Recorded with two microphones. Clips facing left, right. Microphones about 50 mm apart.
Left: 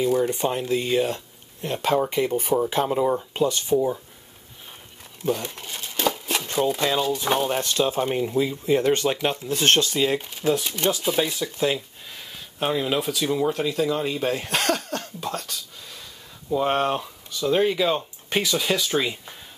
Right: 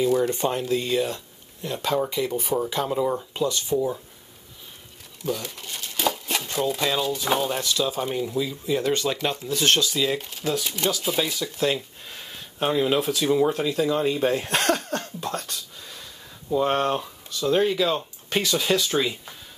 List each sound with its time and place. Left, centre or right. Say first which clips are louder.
0.0 s speech: even; centre; by 2.5 s left
2.7 s speech: left 2 dB; left
5.2 s speech: left 3 dB; left
5.6 s crumpling: left 1 dB; centre
6.7 s speech: left 2 dB; centre
7.6 s speech: left 3 dB; left
10.2 s speech: left 4 dB; centre
11.1 s speech: left 1 dB; centre